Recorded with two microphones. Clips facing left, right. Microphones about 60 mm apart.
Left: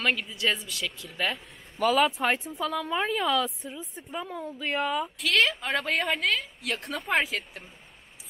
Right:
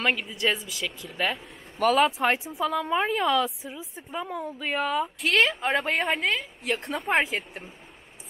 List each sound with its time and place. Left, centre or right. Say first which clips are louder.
0.0 s a woman's voice: right 2 dB; centre
5.6 s a woman's voice: right 3 dB; centre